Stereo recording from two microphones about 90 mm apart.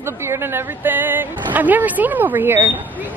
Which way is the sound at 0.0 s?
30° right (ahead or behind).